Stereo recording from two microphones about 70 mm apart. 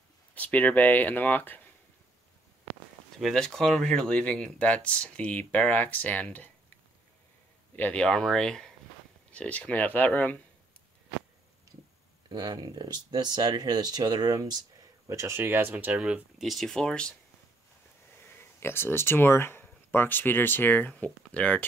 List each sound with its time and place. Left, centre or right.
0.3 s speech: left
3.2 s speech: centre; by 6.5 s left
7.7 s speech: left
8.0 s speech: centre
9.3 s speech: centre
12.3 s speech: right
15.0 s speech: right
15.4 s speech: right
16.0 s speech: centre
16.4 s speech: centre
18.2 s speech: left; by 21.6 s centre